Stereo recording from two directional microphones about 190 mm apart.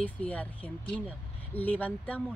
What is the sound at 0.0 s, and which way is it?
Speech, 5° left (ahead or behind).